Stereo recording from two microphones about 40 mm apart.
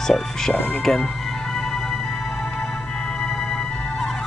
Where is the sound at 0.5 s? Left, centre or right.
Left.